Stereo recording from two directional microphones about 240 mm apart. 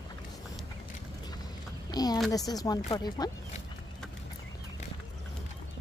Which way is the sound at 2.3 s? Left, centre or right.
Centre.